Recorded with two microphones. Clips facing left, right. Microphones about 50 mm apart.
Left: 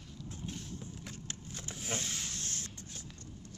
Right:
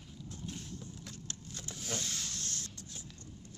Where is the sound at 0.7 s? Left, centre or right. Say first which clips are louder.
Left 2 dB; left.